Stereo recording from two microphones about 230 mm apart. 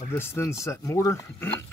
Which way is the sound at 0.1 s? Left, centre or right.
Centre.